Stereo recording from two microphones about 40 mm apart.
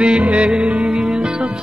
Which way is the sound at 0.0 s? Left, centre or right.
Right.